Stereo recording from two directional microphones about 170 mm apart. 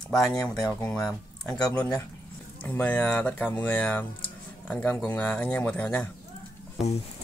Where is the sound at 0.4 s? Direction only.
20° left (ahead or behind).